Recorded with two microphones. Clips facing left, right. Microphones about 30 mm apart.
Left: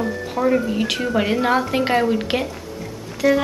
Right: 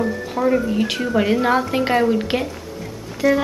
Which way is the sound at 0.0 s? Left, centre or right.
Centre.